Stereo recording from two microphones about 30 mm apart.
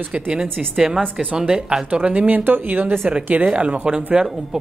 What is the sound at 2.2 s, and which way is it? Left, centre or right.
Speech, right.